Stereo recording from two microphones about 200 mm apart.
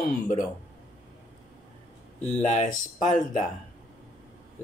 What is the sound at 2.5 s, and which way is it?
Speech, 35° left (ahead or behind).